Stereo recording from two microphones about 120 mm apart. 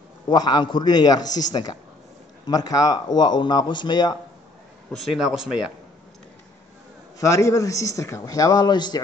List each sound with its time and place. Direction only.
0.3 s speech: 35° left (ahead or behind)
5.1 s speech: 5° right (ahead or behind)
7.2 s a man's voice: 25° left (ahead or behind)